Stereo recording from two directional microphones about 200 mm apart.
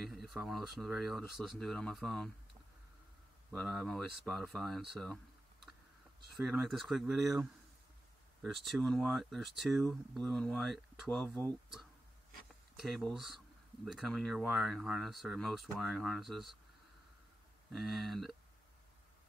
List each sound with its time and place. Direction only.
0.1 s speech: centre (ahead or behind)
3.5 s speech: centre (ahead or behind)
6.3 s speech: centre (ahead or behind)
17.7 s speech: centre (ahead or behind)